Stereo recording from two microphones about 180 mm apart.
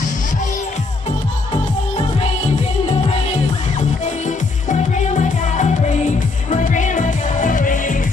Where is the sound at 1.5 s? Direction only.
30° left (ahead or behind).